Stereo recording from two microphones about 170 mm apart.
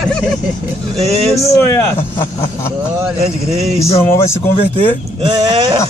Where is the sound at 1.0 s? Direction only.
35° right (ahead or behind).